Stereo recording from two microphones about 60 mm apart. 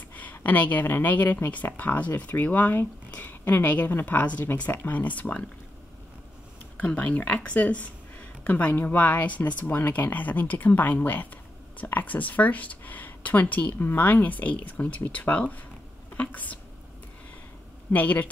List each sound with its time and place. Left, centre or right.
0.1 s speech: left
6.8 s speech: left
17.9 s speech: left